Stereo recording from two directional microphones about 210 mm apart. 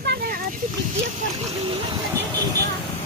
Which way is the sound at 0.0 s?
55° right (ahead or behind).